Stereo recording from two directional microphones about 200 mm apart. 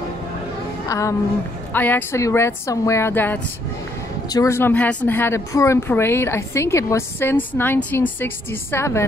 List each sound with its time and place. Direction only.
0.8 s speech: 15° left (ahead or behind)